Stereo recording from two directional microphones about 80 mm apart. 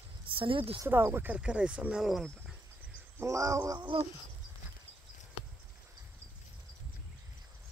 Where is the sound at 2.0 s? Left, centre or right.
Centre.